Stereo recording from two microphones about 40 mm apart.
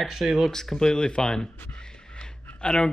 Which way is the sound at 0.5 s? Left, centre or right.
Centre.